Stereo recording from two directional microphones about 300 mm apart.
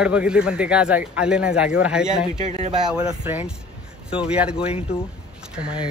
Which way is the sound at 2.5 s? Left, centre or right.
Right.